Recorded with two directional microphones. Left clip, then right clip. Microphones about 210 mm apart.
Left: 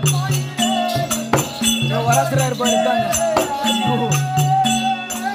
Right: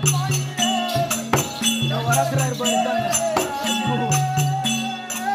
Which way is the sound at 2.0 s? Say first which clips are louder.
Left 4 dB; 40° left (ahead or behind).